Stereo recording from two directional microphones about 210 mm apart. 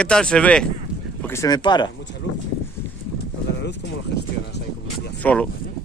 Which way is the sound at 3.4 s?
55° left (ahead or behind).